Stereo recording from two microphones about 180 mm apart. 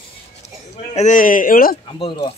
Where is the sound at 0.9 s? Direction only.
45° left (ahead or behind).